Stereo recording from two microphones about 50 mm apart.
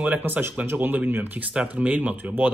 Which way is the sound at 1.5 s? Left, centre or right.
Right.